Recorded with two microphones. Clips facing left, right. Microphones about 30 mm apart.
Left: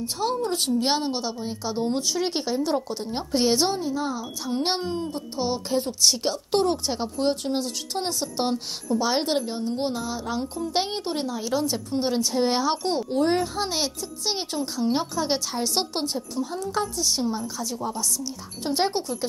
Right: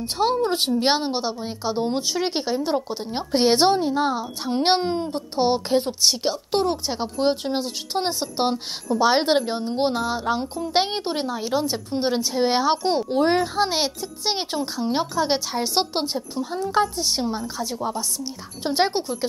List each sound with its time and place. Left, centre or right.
0.0 s a child's voice: right
3.6 s a woman's voice: right
6.0 s a woman's voice: centre
7.2 s a child's voice: right
12.2 s a woman's voice: centre
12.5 s a child's voice: right